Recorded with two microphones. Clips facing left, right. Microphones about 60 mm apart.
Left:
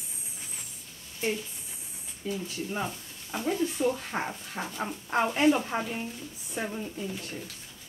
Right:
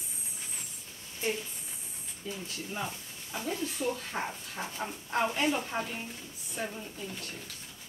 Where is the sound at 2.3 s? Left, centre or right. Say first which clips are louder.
Left 6 dB; centre.